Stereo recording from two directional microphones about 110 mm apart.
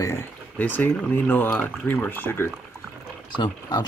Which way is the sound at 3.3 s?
45° left (ahead or behind).